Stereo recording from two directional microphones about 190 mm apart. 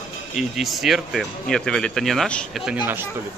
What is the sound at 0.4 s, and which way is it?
Speech, centre (ahead or behind).